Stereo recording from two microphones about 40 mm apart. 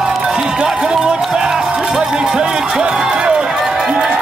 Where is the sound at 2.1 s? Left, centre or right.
Centre.